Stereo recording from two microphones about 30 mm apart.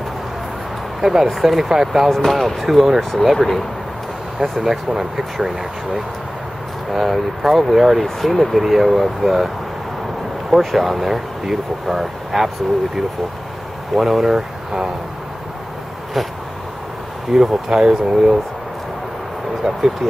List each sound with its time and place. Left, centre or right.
1.0 s speech: centre
2.0 s speech: centre
3.0 s speech: centre
4.4 s speech: centre
6.9 s speech: centre
10.6 s speech: centre
13.9 s speech: centre
17.3 s speech: centre
19.6 s speech: centre